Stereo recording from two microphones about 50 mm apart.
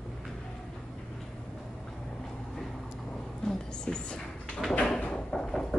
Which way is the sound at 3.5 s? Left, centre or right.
Centre.